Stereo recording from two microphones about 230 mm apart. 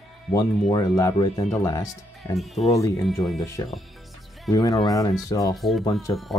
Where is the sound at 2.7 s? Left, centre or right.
Centre.